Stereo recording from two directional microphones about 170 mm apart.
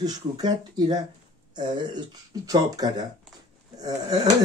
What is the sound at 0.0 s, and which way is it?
Speech, 25° right (ahead or behind).